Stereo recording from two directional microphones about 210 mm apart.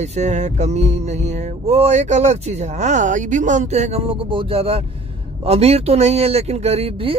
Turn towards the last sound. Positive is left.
turn(degrees=-25)  # may be behind; listen again after turning